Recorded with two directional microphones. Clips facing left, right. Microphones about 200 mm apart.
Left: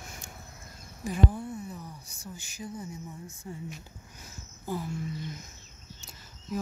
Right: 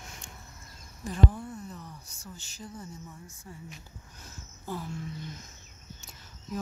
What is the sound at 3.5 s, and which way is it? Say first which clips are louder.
Speech: left 6 dB; 25° left (ahead or behind).